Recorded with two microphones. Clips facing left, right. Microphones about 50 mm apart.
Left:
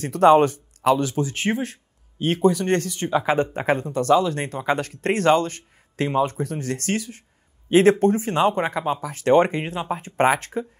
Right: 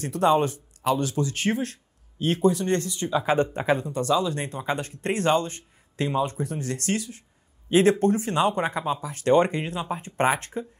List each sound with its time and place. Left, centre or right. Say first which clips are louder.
0.0 s speech: left 6 dB; left
1.2 s speech: left 2 dB; left